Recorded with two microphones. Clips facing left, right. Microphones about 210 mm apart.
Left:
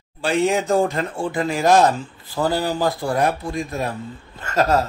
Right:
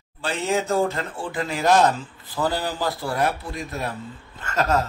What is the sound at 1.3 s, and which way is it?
Speech, 45° left (ahead or behind).